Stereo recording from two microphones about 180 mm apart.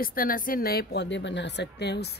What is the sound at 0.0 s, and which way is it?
A woman's voice, 50° left (ahead or behind).